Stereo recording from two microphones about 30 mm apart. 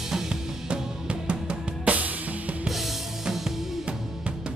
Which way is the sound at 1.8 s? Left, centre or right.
Right.